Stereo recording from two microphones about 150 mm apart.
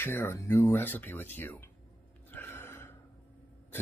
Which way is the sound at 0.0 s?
15° left (ahead or behind).